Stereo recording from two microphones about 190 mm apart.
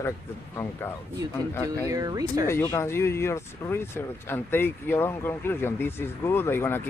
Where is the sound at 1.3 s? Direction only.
15° left (ahead or behind).